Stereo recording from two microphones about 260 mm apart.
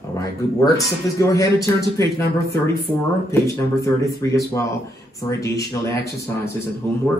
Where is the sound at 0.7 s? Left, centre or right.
Centre.